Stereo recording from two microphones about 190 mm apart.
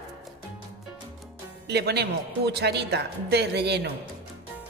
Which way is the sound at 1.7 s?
60° right (ahead or behind).